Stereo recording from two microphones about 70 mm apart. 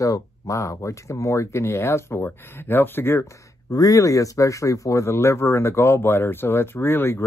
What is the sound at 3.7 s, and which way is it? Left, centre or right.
Speech, left.